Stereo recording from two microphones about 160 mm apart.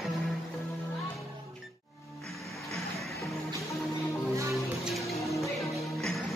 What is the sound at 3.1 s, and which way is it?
Music, 20° left (ahead or behind).